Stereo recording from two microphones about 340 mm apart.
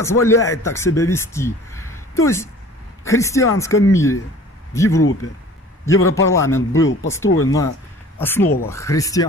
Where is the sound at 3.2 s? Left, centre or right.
Centre.